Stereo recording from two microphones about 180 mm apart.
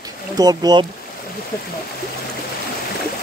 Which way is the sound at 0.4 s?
20° right (ahead or behind).